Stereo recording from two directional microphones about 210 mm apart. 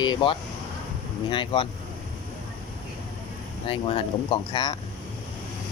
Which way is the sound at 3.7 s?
25° left (ahead or behind).